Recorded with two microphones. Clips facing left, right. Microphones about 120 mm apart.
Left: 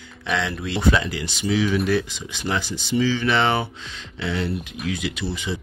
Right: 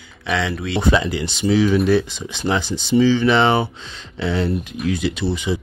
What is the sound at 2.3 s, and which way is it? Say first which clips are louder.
Speech: right 5 dB; 25° right (ahead or behind).